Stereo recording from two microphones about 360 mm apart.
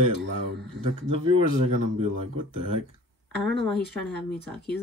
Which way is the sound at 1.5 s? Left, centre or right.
Right.